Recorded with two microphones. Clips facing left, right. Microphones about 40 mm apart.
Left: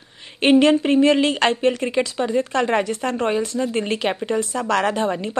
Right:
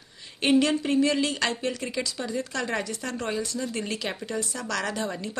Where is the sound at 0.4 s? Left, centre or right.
Left.